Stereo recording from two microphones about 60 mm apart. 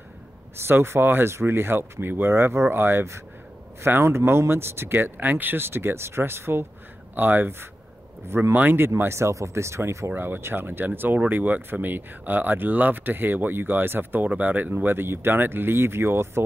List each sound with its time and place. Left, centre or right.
0.6 s speech: right